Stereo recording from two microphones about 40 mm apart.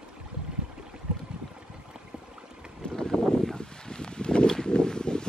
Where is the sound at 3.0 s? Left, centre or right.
Centre.